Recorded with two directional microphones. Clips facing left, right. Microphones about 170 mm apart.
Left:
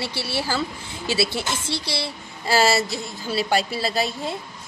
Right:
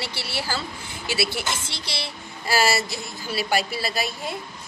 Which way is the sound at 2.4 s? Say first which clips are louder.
Left 3 dB; 25° left (ahead or behind).